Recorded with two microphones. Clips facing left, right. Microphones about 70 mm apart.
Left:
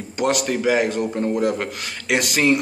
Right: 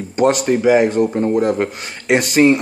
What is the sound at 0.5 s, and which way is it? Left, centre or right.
Speech, right.